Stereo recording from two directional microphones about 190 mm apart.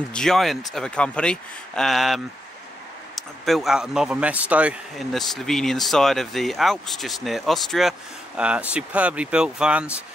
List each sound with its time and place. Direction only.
0.1 s speech: centre (ahead or behind)